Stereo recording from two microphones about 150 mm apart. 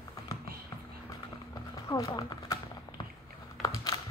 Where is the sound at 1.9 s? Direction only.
25° left (ahead or behind).